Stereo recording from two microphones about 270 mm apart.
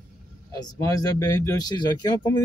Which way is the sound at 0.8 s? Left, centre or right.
Centre.